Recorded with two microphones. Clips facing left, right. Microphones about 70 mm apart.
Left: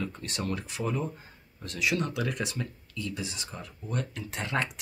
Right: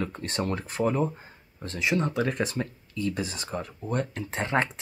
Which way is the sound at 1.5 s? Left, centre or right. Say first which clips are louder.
Right 3 dB; right.